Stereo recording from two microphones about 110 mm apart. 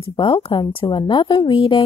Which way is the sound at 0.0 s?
50° left (ahead or behind).